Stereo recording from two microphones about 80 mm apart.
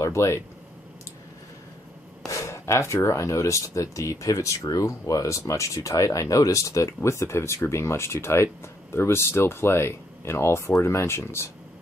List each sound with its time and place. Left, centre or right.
0.0 s speech: left
2.2 s speech: left